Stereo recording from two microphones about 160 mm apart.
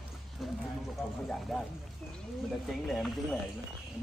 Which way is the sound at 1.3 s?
Centre (ahead or behind).